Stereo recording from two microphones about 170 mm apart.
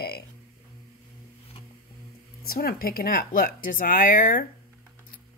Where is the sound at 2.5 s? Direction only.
60° left (ahead or behind).